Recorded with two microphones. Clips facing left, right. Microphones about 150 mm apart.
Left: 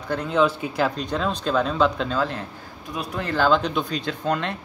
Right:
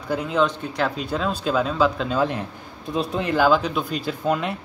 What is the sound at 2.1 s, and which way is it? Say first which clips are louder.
Speech: right 3 dB; 15° right (ahead or behind).